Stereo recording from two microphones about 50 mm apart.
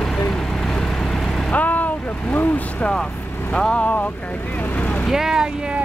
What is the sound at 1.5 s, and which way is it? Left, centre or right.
Speech, left.